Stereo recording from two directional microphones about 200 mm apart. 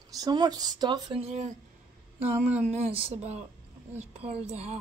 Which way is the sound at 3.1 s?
35° right (ahead or behind).